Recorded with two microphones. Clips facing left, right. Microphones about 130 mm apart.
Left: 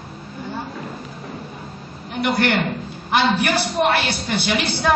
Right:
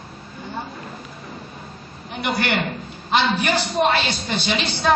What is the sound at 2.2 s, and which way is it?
A man's voice, 15° right (ahead or behind).